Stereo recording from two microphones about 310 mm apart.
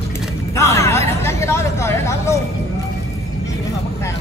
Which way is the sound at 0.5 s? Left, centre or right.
Centre.